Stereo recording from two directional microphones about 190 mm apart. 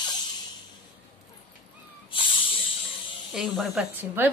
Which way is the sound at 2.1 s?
25° left (ahead or behind).